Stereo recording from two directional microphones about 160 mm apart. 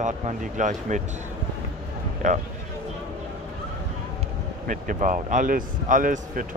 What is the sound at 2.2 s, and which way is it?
Speech, 55° right (ahead or behind).